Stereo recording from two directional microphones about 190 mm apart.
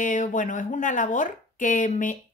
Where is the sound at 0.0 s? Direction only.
45° left (ahead or behind).